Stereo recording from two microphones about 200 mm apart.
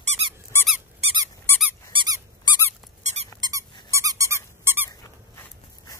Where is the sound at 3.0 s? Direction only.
35° right (ahead or behind).